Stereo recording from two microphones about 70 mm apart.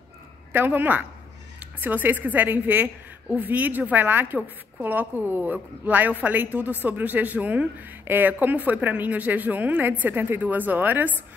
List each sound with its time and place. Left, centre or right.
0.5 s a woman's voice: right